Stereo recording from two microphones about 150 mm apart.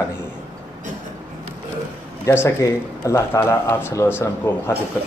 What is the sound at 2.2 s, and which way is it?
A man's voice, 20° left (ahead or behind).